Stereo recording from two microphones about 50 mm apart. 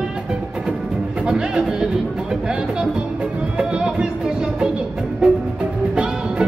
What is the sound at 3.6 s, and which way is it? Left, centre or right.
Music, centre.